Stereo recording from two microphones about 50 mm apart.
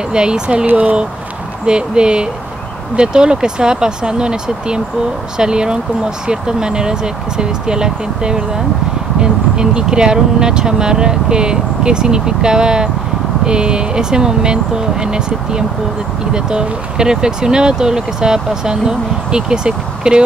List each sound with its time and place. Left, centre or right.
0.1 s speech: centre
0.7 s speech: right
1.7 s speech: centre